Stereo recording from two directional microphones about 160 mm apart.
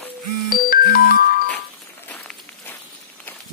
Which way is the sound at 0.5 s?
65° left (ahead or behind).